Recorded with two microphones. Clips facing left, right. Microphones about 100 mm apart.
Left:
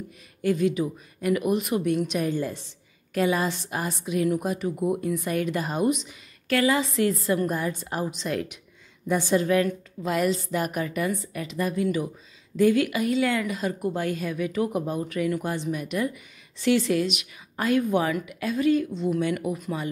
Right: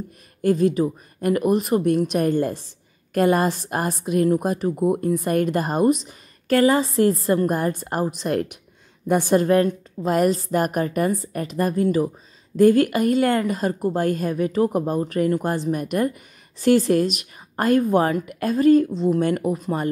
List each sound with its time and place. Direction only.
0.4 s a woman's voice: 40° right (ahead or behind)
7.4 s a woman's voice: 50° right (ahead or behind)